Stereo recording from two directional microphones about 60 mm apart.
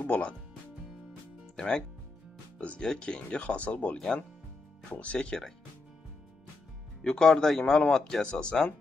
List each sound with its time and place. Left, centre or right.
0.0 s speech: left
1.6 s speech: centre
7.0 s speech: centre